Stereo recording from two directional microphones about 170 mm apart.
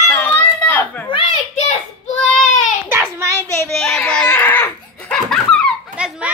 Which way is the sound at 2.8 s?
10° right (ahead or behind).